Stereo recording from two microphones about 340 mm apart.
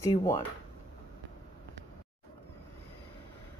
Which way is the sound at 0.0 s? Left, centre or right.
Centre.